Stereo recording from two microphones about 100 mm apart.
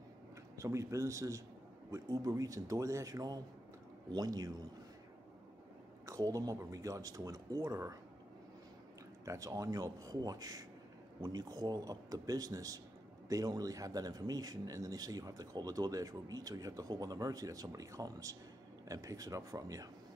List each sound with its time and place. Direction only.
0.6 s a man's voice: 30° right (ahead or behind)
6.0 s a man's voice: 35° right (ahead or behind)
9.2 s a man's voice: 35° right (ahead or behind)